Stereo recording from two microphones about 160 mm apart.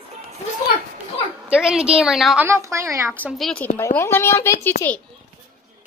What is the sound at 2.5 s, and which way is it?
Speech, 20° right (ahead or behind).